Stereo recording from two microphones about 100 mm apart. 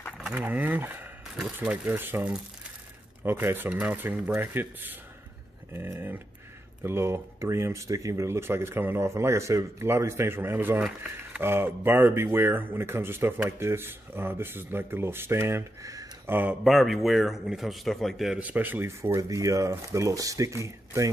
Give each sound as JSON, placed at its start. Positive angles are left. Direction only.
{"t": 0.4, "sound": "speech", "side_deg": -15}
{"t": 1.3, "sound": "speech", "side_deg": -10}
{"t": 16.3, "sound": "speech", "side_deg": -15}
{"t": 16.6, "sound": "a man's voice", "side_deg": 0}
{"t": 18.4, "sound": "speech", "side_deg": -15}